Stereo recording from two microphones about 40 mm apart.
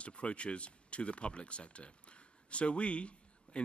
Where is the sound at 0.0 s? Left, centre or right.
Left.